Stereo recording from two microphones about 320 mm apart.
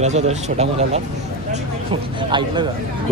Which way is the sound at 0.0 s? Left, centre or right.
Right.